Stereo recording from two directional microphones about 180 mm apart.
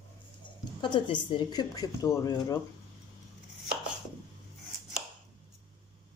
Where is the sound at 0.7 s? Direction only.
25° left (ahead or behind).